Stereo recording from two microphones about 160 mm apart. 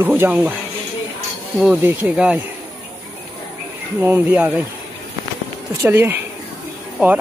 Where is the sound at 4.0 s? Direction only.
15° right (ahead or behind).